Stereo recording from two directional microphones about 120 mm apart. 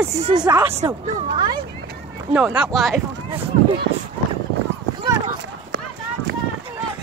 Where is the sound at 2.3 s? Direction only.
10° right (ahead or behind).